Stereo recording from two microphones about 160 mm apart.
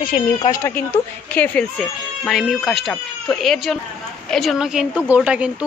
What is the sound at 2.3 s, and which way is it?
A woman's voice, centre (ahead or behind).